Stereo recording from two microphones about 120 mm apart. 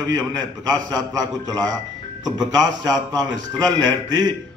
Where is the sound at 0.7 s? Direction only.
30° right (ahead or behind).